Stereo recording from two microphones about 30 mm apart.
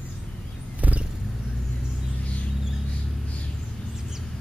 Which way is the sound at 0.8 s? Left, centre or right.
Right.